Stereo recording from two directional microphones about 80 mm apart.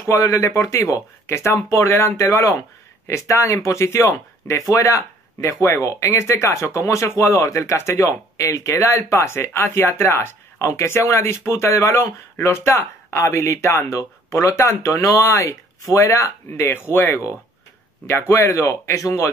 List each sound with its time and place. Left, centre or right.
0.0 s speech: left
18.3 s speech: left